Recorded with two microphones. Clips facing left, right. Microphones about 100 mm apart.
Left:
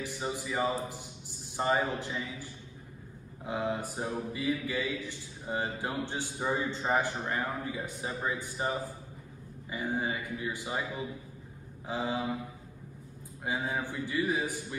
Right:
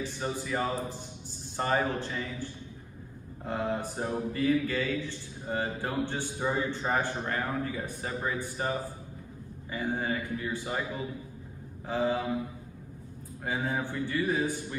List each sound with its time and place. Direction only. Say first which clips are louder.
0.0 s a man's voice: right 2 dB; 10° left (ahead or behind)
11.9 s a man's voice: right 5 dB; 15° left (ahead or behind)
13.4 s a man's voice: right 2 dB; 10° left (ahead or behind)